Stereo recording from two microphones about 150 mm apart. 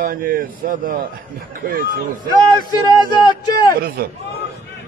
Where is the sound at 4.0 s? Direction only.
90° right.